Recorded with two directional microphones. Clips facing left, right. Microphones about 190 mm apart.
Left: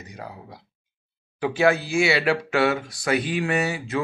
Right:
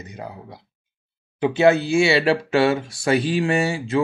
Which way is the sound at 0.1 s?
25° right (ahead or behind).